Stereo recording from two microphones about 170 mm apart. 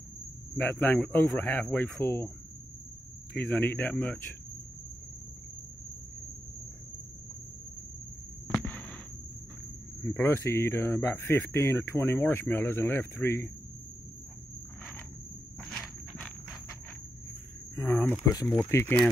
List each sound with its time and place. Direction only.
0.6 s speech: 10° left (ahead or behind)
3.3 s speech: 10° left (ahead or behind)
8.5 s a sound: 10° left (ahead or behind)
10.1 s speech: 15° left (ahead or behind)
15.6 s walk: centre (ahead or behind)
17.7 s speech: 15° left (ahead or behind)